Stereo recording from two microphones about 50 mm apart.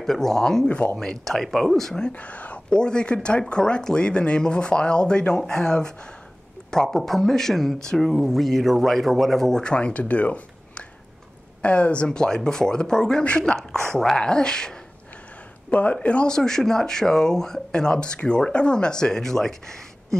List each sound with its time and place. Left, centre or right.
0.0 s speech: centre
0.7 s speech: left
1.0 s speech: centre
2.0 s speech: left
2.7 s speech: centre
9.6 s speech: centre
15.7 s speech: left
16.3 s speech: centre